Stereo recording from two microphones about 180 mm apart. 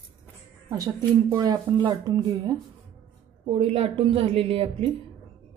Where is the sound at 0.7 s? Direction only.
20° right (ahead or behind).